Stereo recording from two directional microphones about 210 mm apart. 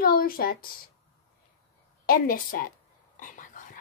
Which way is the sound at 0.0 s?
45° left (ahead or behind).